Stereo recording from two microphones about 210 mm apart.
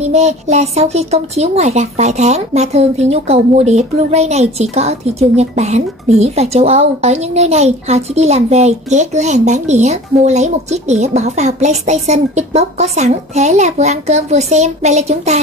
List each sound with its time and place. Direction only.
0.0 s a woman's voice: 30° right (ahead or behind)